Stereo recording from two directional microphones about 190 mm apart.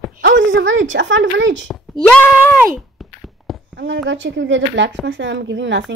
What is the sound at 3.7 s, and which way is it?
Speech, 70° right (ahead or behind).